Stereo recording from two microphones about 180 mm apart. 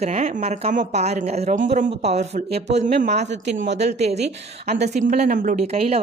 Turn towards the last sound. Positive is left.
turn(degrees=-35)  # may be behind; listen again after turning